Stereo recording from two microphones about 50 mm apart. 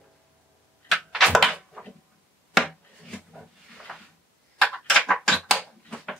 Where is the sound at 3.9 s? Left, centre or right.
Centre.